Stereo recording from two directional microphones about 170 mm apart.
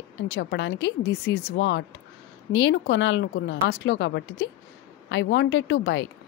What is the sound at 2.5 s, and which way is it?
Speech, 90° left.